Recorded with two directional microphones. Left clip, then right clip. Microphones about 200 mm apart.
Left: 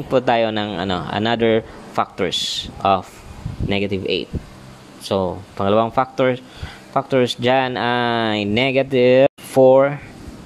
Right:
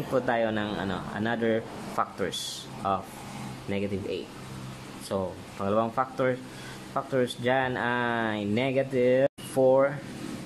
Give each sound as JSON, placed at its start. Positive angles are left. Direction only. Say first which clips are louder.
{"t": 0.1, "sound": "speech", "louder": "left 10 dB", "side_deg": 35}